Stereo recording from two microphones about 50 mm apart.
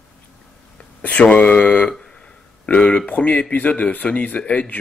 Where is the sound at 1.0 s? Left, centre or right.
Left.